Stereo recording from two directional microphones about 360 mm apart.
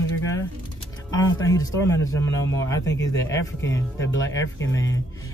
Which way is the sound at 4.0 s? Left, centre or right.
Left.